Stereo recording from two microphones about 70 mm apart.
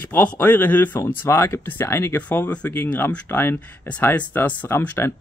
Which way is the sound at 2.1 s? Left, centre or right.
Left.